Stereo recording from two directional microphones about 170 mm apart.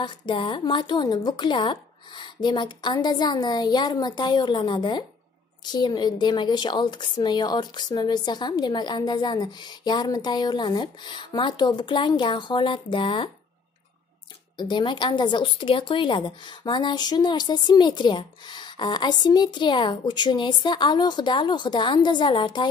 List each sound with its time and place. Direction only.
0.0 s speech: 30° left (ahead or behind)
14.6 s speech: 30° left (ahead or behind)